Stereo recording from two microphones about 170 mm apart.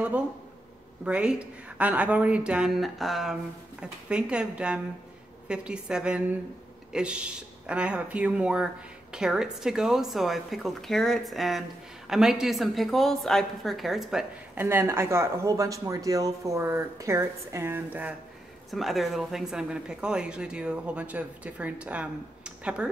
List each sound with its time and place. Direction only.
1.0 s speech: 5° right (ahead or behind)
14.6 s speech: 15° right (ahead or behind)